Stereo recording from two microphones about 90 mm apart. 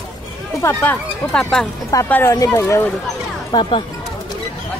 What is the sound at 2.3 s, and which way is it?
Speech, 45° left (ahead or behind).